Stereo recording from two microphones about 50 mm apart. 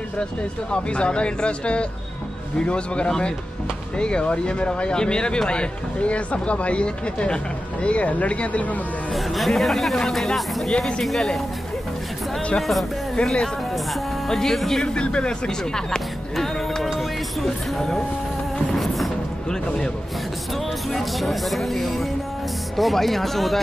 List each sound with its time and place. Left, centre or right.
0.7 s speech: left
9.1 s speech: centre
12.5 s speech: centre
13.1 s speech: centre
16.3 s music: centre
17.4 s speech: centre
18.7 s music: centre
20.9 s speech: centre